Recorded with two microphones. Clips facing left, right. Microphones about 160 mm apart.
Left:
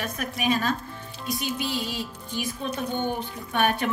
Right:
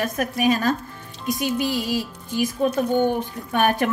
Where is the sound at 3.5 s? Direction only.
40° right (ahead or behind).